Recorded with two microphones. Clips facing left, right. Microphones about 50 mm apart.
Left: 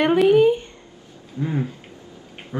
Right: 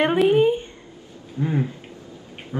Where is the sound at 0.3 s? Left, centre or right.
Right.